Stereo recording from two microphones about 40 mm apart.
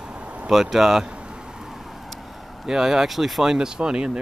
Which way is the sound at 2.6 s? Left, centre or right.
Centre.